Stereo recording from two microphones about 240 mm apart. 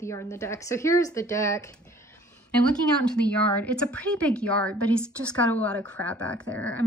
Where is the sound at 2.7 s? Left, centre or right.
Centre.